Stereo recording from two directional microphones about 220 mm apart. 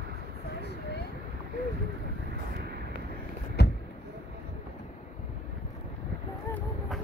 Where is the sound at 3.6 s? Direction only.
50° left (ahead or behind).